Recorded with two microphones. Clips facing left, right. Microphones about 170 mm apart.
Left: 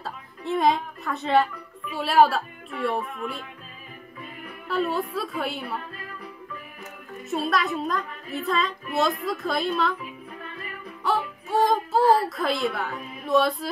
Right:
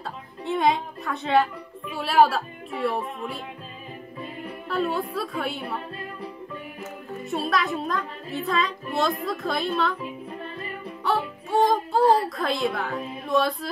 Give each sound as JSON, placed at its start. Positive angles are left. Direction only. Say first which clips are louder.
{"t": 0.0, "sound": "music", "louder": "right 1 dB", "side_deg": 0}
{"t": 4.2, "sound": "music", "louder": "right 5 dB", "side_deg": -30}
{"t": 4.6, "sound": "speech", "louder": "left 1 dB", "side_deg": 0}
{"t": 5.9, "sound": "music", "louder": "right 4 dB", "side_deg": -30}
{"t": 7.2, "sound": "speech", "louder": "even", "side_deg": 0}
{"t": 10.4, "sound": "music", "louder": "right 3 dB", "side_deg": -30}
{"t": 11.1, "sound": "music", "louder": "even", "side_deg": 0}
{"t": 12.3, "sound": "speech", "louder": "even", "side_deg": 0}
{"t": 13.2, "sound": "a sound", "louder": "left 2 dB", "side_deg": 0}